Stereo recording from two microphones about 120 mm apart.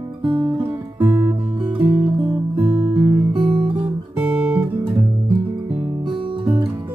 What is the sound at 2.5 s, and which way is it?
Guitar, 15° right (ahead or behind).